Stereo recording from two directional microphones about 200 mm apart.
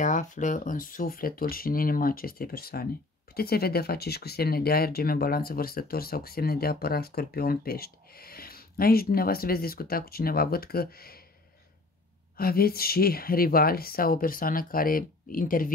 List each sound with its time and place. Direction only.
0.0 s speech: 40° left (ahead or behind)
12.4 s speech: 50° left (ahead or behind)